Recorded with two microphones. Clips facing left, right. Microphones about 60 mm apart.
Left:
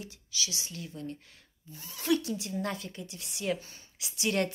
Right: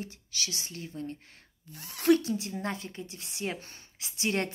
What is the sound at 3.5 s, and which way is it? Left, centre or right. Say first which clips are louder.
Speech: even; right.